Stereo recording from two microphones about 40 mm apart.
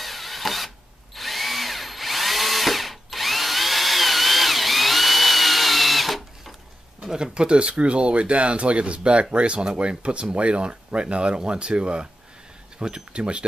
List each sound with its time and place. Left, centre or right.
0.0 s mechanisms: centre
1.1 s drill: centre
7.0 s speech: centre